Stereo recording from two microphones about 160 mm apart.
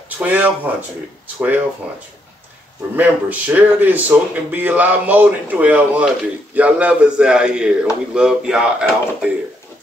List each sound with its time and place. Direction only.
0.2 s speech: 10° right (ahead or behind)
3.0 s speech: 10° right (ahead or behind)